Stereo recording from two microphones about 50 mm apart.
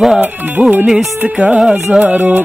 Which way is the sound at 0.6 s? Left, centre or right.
Right.